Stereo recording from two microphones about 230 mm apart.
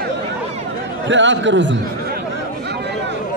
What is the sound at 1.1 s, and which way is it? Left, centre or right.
Speech, right.